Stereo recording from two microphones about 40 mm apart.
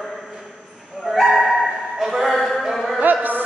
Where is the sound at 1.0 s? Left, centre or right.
Centre.